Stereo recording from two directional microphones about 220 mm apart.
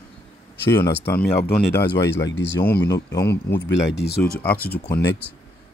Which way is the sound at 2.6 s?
10° left (ahead or behind).